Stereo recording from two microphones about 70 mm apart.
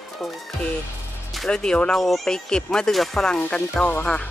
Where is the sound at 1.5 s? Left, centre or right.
Centre.